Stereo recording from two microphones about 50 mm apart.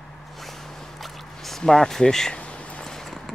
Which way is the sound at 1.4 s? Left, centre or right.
Centre.